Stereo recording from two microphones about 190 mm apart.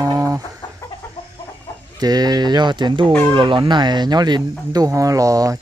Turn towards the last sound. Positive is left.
turn(degrees=-15)  # may be behind; listen again after turning